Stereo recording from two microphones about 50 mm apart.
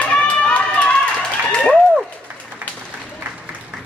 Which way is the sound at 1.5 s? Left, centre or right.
Left.